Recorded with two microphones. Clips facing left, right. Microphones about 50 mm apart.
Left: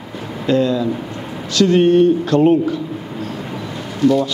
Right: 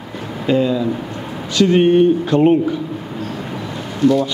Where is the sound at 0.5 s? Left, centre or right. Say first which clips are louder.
Even; centre.